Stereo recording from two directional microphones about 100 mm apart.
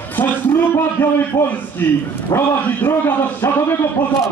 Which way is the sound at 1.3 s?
40° left (ahead or behind).